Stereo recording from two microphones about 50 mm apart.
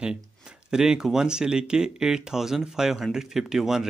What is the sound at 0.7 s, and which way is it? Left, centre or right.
Speech, centre.